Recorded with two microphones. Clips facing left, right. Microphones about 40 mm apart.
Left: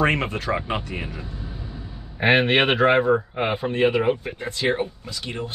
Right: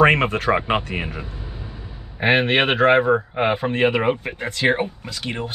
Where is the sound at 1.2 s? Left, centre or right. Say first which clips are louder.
Even; centre.